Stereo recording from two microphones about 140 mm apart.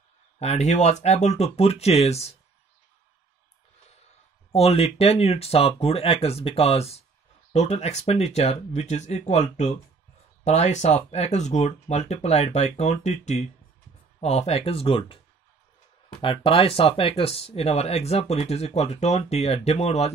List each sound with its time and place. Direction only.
0.4 s speech: 50° left (ahead or behind)
4.5 s speech: 45° left (ahead or behind)